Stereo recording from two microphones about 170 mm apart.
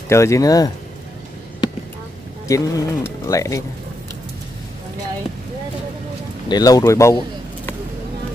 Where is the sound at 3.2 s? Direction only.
20° left (ahead or behind).